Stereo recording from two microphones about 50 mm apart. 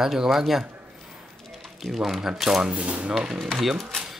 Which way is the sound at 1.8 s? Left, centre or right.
Centre.